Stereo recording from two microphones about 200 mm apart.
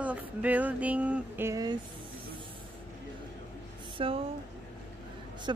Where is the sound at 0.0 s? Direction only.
5° right (ahead or behind).